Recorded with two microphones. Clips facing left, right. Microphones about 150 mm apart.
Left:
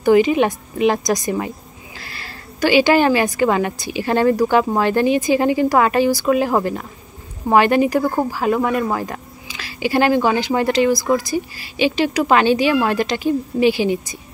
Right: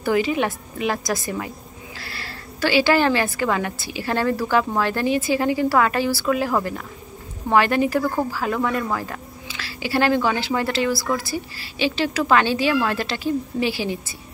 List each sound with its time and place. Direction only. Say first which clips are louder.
0.0 s a woman's voice: left 7 dB; 20° left (ahead or behind)